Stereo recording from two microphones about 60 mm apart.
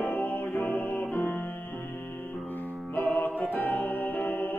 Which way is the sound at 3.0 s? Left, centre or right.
Left.